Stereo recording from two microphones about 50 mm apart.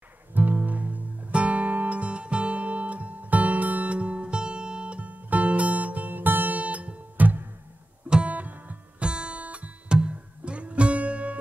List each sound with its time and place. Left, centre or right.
0.3 s music: right
8.1 s music: right
8.4 s music: right
9.0 s music: right